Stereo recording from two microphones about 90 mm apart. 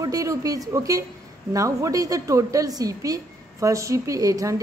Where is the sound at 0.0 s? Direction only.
40° right (ahead or behind).